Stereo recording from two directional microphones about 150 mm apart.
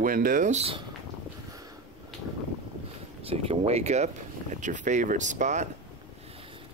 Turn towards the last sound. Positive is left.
turn(degrees=-55)  # may be behind; listen again after turning